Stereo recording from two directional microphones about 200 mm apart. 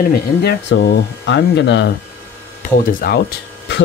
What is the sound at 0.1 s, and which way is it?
Speech, 50° left (ahead or behind).